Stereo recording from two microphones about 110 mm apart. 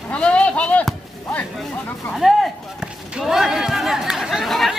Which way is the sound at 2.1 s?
Centre (ahead or behind).